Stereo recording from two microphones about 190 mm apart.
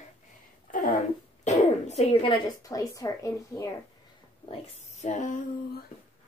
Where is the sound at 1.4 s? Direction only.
35° left (ahead or behind); by 3.7 s 15° left (ahead or behind).